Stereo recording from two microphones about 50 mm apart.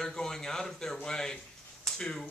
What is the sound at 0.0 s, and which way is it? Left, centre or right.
Speech, centre.